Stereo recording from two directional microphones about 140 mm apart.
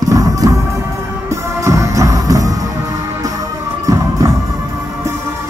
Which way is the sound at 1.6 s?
20° right (ahead or behind).